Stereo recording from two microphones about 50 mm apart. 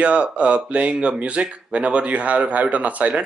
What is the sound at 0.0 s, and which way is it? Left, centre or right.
A man's voice, right.